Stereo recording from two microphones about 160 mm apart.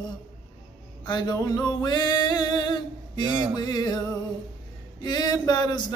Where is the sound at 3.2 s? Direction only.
30° right (ahead or behind).